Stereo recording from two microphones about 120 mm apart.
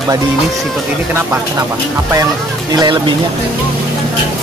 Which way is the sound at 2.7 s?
40° right (ahead or behind).